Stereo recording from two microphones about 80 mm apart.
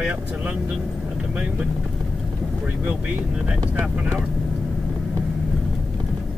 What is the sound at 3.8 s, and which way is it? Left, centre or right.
Speech, right.